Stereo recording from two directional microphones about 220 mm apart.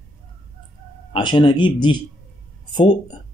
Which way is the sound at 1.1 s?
20° left (ahead or behind).